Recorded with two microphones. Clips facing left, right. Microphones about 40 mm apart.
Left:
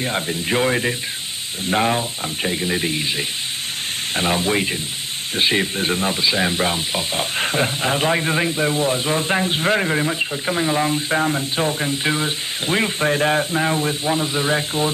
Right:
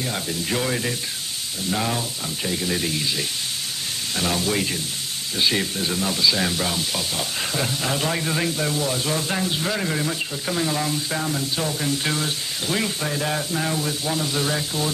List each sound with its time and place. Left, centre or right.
0.0 s speech: left